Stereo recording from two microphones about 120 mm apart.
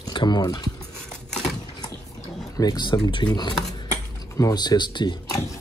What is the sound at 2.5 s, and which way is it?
Speech, 35° left (ahead or behind).